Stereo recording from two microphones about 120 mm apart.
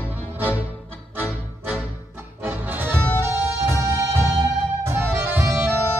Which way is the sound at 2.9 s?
10° left (ahead or behind).